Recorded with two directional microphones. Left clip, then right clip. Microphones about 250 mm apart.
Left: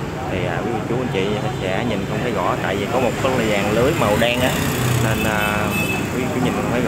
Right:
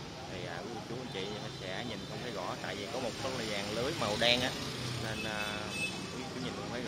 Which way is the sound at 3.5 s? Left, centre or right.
Centre.